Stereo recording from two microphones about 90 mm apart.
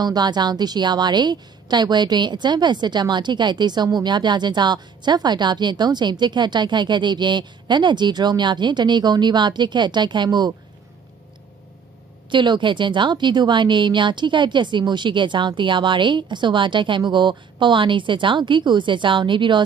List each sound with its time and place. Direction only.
0.0 s a woman's voice: 50° right (ahead or behind)
12.3 s a woman's voice: 60° right (ahead or behind)